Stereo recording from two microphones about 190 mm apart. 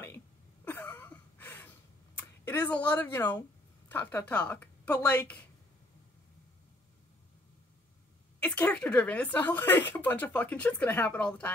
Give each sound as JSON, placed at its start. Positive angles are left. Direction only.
{"t": 0.7, "sound": "a sound", "side_deg": 10}
{"t": 2.1, "sound": "speech", "side_deg": 10}
{"t": 8.4, "sound": "speech", "side_deg": 5}